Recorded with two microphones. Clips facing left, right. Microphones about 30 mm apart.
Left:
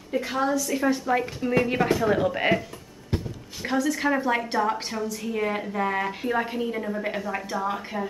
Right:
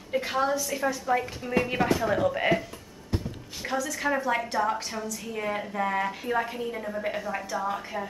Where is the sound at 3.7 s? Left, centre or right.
Centre.